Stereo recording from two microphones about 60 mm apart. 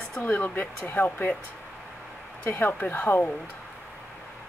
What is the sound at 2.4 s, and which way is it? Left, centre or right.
Speech, left.